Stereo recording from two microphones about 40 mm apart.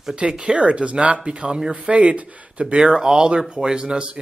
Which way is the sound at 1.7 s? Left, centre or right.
Right.